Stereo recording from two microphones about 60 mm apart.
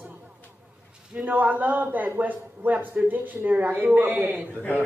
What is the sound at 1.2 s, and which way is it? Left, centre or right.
Speech, right.